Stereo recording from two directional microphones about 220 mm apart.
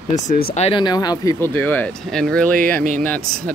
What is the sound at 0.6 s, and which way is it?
Speech, 20° left (ahead or behind).